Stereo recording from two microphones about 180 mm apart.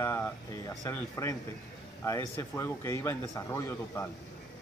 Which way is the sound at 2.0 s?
15° left (ahead or behind).